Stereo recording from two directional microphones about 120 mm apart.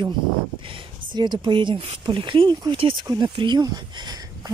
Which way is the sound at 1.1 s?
40° right (ahead or behind).